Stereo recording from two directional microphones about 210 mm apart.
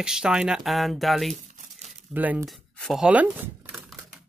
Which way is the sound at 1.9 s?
5° right (ahead or behind).